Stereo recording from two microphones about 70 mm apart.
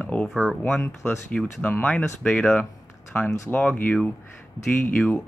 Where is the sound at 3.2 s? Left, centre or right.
Left.